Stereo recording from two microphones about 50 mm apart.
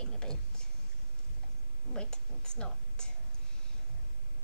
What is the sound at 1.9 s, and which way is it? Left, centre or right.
A woman's voice, centre.